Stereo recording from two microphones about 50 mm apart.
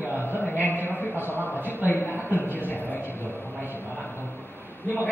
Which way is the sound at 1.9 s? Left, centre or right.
Left.